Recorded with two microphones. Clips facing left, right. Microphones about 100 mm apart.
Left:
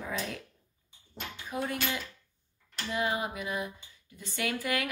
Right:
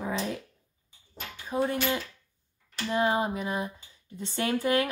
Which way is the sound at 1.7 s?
30° right (ahead or behind).